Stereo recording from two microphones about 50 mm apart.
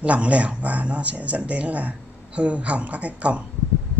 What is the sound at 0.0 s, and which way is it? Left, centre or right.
A man's voice, right.